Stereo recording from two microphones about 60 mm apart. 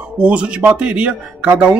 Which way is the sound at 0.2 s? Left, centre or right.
Centre.